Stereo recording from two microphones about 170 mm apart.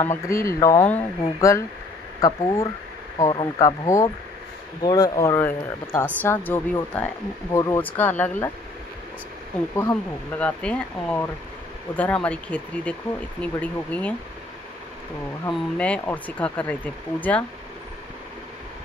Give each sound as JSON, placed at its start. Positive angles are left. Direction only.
{"t": 0.0, "sound": "speech", "side_deg": 15}
{"t": 9.8, "sound": "speech", "side_deg": 10}
{"t": 15.4, "sound": "speech", "side_deg": 10}